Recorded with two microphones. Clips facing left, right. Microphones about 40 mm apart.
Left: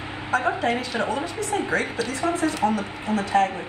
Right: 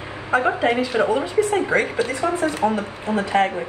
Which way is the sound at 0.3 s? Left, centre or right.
Centre.